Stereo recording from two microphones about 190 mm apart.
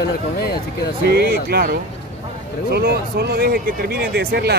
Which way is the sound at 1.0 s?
55° right (ahead or behind).